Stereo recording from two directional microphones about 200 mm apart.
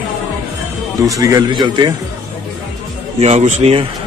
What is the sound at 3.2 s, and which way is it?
Speech, 35° right (ahead or behind).